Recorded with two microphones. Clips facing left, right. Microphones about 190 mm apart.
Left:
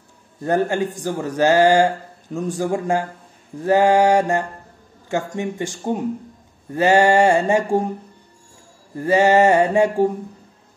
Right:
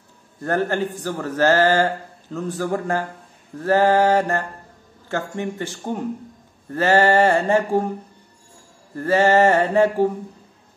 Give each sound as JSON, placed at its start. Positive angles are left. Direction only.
{"t": 0.4, "sound": "a man's voice", "side_deg": 15}
{"t": 8.9, "sound": "a man's voice", "side_deg": 15}